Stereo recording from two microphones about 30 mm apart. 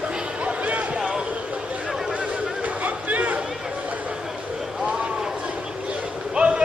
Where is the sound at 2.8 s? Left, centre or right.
Right.